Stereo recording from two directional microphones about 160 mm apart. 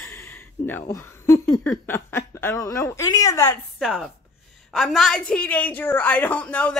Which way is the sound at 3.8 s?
5° right (ahead or behind).